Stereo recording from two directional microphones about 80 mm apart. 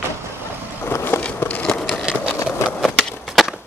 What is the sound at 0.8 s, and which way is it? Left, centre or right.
Skateboard, left.